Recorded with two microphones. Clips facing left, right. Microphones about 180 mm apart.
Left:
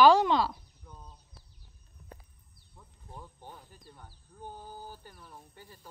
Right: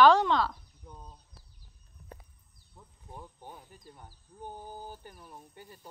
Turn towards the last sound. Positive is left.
turn(degrees=-15)  # may be behind; listen again after turning